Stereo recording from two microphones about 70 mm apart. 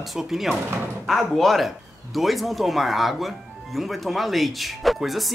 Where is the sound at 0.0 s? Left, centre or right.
Centre.